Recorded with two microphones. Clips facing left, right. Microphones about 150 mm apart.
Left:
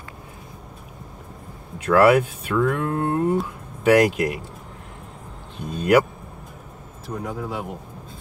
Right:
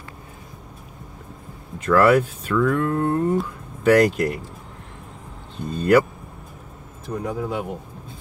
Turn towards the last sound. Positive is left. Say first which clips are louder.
# right 3 dB
turn(degrees=0)  # may be behind; listen again after turning